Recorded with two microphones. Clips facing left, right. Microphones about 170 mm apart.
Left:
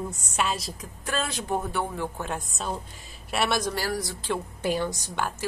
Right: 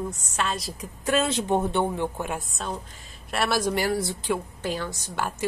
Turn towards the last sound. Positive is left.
turn(degrees=-5)  # may be behind; listen again after turning